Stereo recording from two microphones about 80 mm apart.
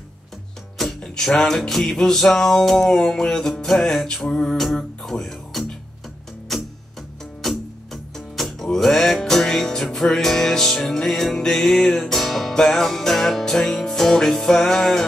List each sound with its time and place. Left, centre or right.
0.7 s music: centre